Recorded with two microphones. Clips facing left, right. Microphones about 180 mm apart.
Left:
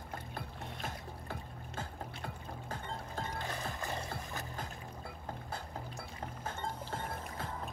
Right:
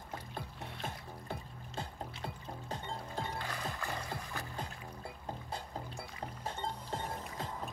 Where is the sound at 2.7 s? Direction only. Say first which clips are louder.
Right 1 dB; 20° right (ahead or behind).